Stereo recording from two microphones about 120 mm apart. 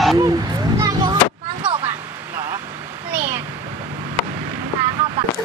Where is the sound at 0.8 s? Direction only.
35° right (ahead or behind).